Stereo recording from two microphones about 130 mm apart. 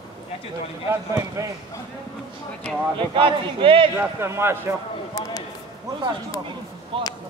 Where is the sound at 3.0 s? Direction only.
40° right (ahead or behind).